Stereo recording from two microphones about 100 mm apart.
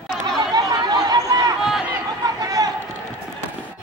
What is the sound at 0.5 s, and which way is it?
Chatter, 40° right (ahead or behind).